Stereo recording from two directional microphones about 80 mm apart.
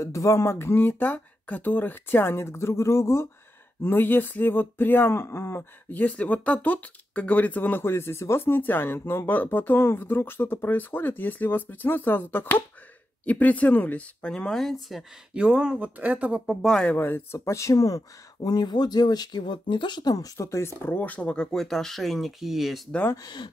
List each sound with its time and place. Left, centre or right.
0.0 s speech: left; by 15.0 s centre
15.3 s speech: centre
16.6 s speech: centre
16.9 s speech: left; by 22.8 s centre
23.1 s speech: left